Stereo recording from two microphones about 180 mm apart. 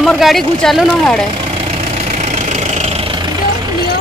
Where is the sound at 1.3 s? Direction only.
30° right (ahead or behind).